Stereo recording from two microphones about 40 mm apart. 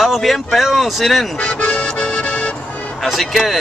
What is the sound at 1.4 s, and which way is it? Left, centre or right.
Music, left.